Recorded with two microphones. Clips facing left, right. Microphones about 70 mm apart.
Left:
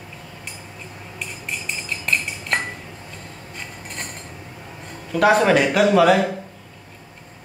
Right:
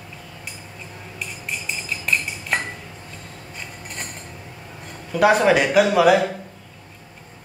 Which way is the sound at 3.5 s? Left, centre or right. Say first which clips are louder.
Left 1 dB; centre.